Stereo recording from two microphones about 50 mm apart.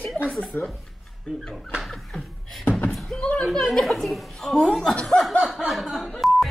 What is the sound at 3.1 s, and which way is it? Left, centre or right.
Speech, centre.